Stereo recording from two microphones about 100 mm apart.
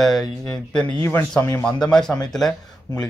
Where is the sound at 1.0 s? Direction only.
20° left (ahead or behind).